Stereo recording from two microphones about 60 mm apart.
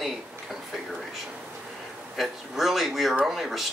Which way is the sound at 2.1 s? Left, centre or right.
Centre.